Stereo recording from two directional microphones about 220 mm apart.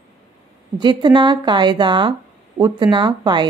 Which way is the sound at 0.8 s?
20° right (ahead or behind).